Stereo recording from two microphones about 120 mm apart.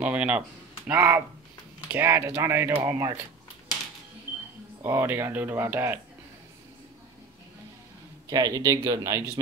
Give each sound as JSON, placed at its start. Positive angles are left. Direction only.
{"t": 0.0, "sound": "speech", "side_deg": -10}
{"t": 2.8, "sound": "speech", "side_deg": -35}
{"t": 4.8, "sound": "speech", "side_deg": -20}
{"t": 8.3, "sound": "speech", "side_deg": -30}